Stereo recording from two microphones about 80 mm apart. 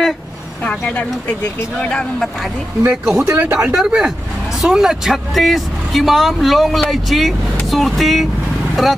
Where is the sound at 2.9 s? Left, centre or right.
Centre.